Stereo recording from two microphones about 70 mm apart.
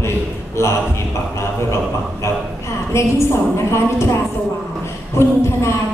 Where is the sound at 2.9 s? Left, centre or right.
Left.